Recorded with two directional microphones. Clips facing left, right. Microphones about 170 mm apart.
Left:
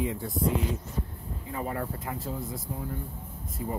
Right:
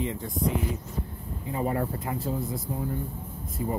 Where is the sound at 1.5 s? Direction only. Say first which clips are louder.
Right 5 dB; 25° right (ahead or behind).